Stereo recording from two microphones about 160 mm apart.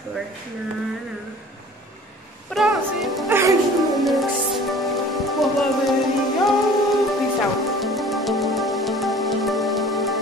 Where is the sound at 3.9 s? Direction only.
Centre (ahead or behind).